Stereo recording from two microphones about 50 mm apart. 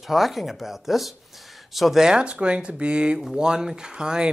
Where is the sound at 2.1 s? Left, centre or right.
Right.